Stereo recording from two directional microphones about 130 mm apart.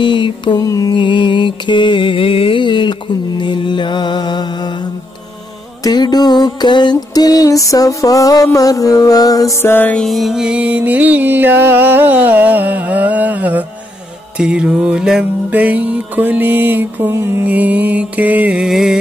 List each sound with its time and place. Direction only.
0.0 s mantra: 40° left (ahead or behind)
5.9 s music: 30° left (ahead or behind); by 10.0 s 15° left (ahead or behind)
10.0 s music: centre (ahead or behind)